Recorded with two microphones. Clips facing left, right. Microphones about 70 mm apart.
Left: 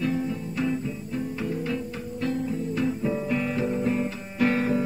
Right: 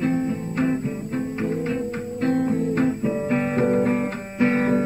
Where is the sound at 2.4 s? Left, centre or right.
Right.